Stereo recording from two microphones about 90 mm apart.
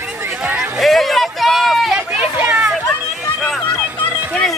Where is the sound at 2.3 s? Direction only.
10° right (ahead or behind).